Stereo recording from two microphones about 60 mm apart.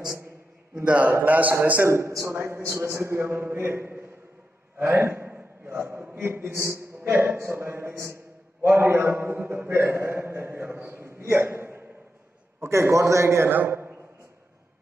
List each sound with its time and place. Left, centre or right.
0.8 s a man's voice: right
1.9 s a man's voice: right
8.6 s a man's voice: right
13.5 s a man's voice: right